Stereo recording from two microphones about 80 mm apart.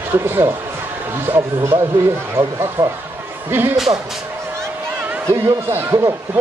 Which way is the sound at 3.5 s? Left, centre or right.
Right.